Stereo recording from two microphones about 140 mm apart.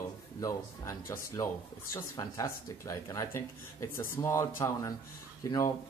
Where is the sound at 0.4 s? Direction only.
20° left (ahead or behind).